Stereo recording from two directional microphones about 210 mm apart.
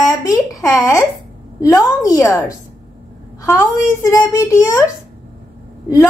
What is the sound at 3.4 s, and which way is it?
A child's voice, 10° left (ahead or behind).